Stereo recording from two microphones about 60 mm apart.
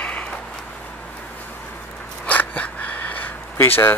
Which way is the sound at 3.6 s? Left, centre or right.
Left.